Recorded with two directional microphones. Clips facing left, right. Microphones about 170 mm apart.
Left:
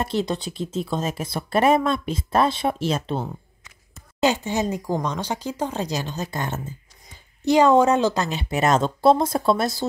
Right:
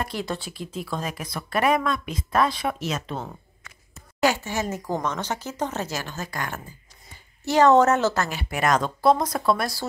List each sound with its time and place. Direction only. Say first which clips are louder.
0.0 s speech: left 5 dB; 25° left (ahead or behind)
4.2 s speech: left 2 dB; 20° left (ahead or behind)
7.4 s speech: left 1 dB; 10° left (ahead or behind)